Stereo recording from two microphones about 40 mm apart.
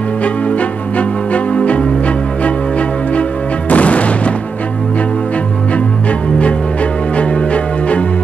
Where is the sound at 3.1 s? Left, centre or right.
Left.